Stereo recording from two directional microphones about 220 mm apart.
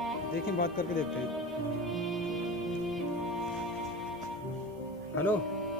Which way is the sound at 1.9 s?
Centre (ahead or behind).